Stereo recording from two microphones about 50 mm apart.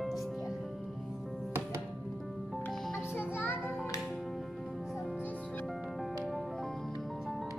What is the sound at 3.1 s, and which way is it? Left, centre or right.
Music, left.